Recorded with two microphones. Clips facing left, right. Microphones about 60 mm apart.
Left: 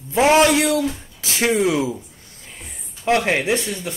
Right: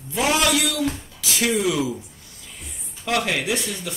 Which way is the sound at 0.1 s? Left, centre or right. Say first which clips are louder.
Left 6 dB; left.